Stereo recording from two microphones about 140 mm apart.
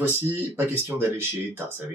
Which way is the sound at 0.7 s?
15° right (ahead or behind).